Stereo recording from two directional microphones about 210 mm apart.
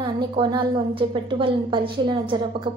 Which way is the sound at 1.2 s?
25° right (ahead or behind).